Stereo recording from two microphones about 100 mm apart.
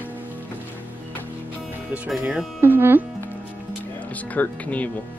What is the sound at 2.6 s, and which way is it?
Speech, 20° right (ahead or behind).